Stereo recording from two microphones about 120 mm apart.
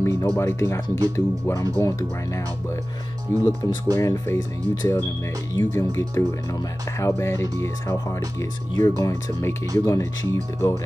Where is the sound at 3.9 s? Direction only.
30° left (ahead or behind).